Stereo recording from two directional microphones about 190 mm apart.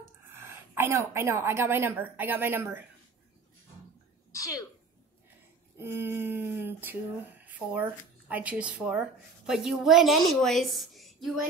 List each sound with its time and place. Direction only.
0.3 s a woman's voice: 10° right (ahead or behind)
4.3 s speech: 15° left (ahead or behind)
5.8 s a woman's voice: 10° right (ahead or behind)